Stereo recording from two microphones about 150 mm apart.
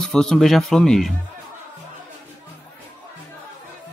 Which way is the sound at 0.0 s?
5° left (ahead or behind).